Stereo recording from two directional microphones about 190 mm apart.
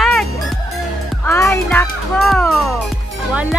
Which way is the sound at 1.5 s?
15° left (ahead or behind).